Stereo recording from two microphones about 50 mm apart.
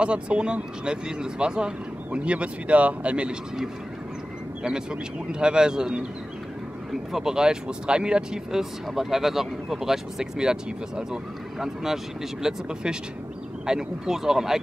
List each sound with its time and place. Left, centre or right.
0.0 s speech: right
5.3 s speech: centre